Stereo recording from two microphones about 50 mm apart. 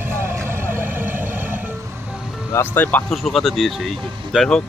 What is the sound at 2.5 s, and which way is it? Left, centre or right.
Speech, left.